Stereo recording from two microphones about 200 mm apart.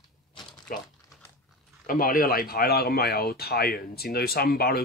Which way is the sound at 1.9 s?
45° left (ahead or behind).